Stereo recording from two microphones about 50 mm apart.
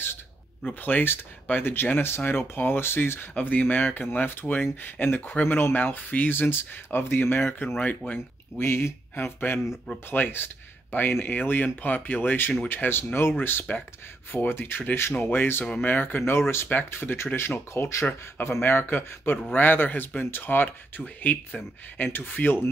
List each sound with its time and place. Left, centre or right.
0.7 s speech: left
8.5 s speech: left
16.3 s speech: left